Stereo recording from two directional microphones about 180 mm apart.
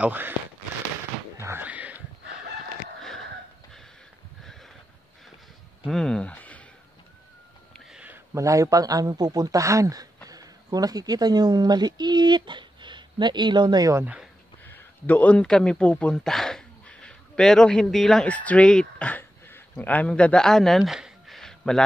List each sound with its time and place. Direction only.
0.0 s speech: 10° right (ahead or behind)
1.4 s a sound: 10° right (ahead or behind)
5.9 s speech: 5° left (ahead or behind)
7.7 s speech: 5° right (ahead or behind)
14.0 s speech: 5° right (ahead or behind)
14.6 s speech: 10° left (ahead or behind)